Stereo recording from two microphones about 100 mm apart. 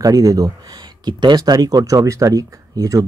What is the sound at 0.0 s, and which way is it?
Speech, 35° right (ahead or behind).